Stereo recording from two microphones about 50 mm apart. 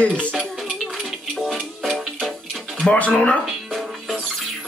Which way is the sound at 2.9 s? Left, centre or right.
Left.